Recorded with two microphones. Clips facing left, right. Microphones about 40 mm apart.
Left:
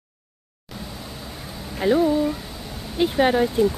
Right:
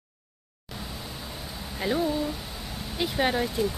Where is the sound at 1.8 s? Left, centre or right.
Centre.